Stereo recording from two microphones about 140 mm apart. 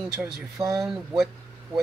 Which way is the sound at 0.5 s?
25° right (ahead or behind).